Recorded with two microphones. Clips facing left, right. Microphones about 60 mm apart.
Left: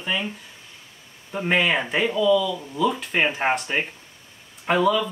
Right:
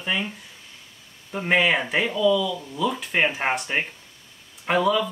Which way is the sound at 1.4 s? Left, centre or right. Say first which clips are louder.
Right 1 dB; centre.